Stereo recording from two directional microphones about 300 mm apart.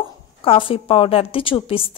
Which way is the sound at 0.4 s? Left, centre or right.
Centre.